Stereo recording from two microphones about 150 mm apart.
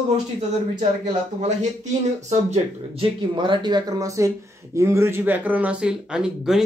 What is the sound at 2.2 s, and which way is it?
Speech, 50° right (ahead or behind).